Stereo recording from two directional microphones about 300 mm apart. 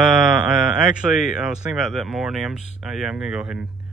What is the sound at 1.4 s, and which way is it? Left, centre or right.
Speech, centre.